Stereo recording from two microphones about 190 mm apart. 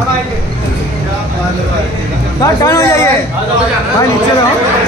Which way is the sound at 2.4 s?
15° left (ahead or behind).